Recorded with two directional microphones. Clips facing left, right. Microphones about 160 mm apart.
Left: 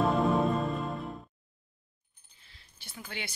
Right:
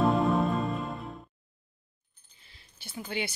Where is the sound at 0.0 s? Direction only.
Centre (ahead or behind).